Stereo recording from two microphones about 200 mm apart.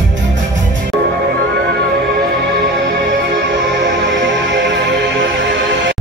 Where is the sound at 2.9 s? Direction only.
60° right (ahead or behind).